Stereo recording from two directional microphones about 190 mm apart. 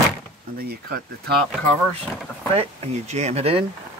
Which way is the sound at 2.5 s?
30° right (ahead or behind).